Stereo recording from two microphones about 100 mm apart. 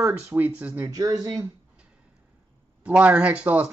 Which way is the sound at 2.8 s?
15° right (ahead or behind).